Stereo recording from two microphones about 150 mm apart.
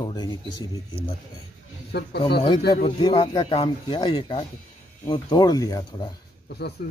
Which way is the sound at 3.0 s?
30° left (ahead or behind).